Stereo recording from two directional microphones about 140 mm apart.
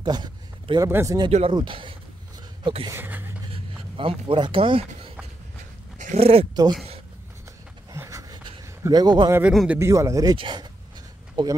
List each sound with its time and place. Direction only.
0.0 s a sound: 30° right (ahead or behind)
0.8 s speech: 20° right (ahead or behind); by 2.9 s 35° right (ahead or behind)
2.9 s speech: 15° right (ahead or behind)
3.5 s a sound: 40° right (ahead or behind)
6.1 s speech: 45° right (ahead or behind)
6.5 s speech: 30° right (ahead or behind)
7.9 s a sound: 20° right (ahead or behind)
8.8 s speech: 30° right (ahead or behind)
9.5 s speech: 5° right (ahead or behind)
9.8 s speech: 20° right (ahead or behind)
10.3 s speech: 35° right (ahead or behind)